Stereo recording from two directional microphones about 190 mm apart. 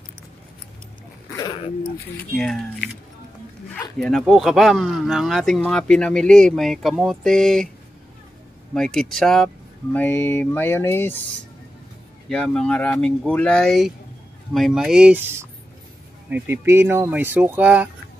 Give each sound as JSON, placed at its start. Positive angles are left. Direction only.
{"t": 1.3, "sound": "dog", "side_deg": 15}
{"t": 2.3, "sound": "speech", "side_deg": 0}
{"t": 4.0, "sound": "speech", "side_deg": 0}
{"t": 8.7, "sound": "speech", "side_deg": 0}
{"t": 9.9, "sound": "music", "side_deg": 10}
{"t": 12.3, "sound": "speech", "side_deg": 5}